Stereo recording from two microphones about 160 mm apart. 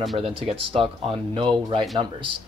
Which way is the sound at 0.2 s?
35° right (ahead or behind).